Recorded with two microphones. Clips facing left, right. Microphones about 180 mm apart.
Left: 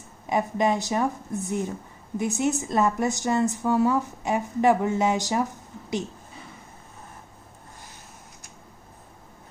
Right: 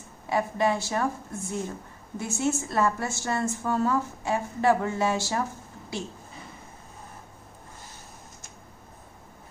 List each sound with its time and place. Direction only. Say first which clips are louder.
0.3 s a woman's voice: left 2 dB; 20° left (ahead or behind)